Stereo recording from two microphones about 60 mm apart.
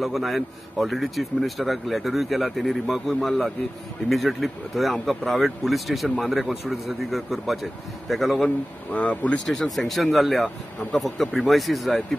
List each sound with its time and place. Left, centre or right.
0.0 s a man's voice: centre
8.9 s speech: left
9.5 s a man's voice: centre